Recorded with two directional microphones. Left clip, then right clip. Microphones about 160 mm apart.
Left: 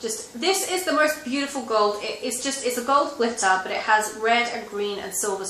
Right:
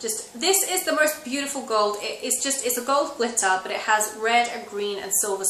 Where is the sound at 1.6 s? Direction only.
10° right (ahead or behind).